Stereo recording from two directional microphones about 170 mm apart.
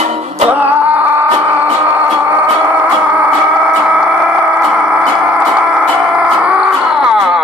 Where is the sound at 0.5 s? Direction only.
10° right (ahead or behind).